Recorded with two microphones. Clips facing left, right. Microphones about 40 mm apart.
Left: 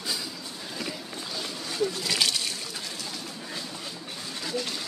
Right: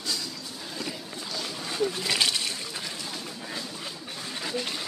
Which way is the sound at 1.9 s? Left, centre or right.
Right.